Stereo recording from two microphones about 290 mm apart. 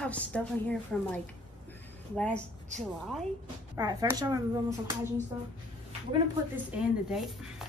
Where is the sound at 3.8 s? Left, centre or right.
Centre.